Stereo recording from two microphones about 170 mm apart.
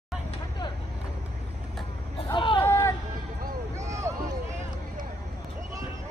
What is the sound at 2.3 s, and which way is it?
Hubbub, 30° left (ahead or behind).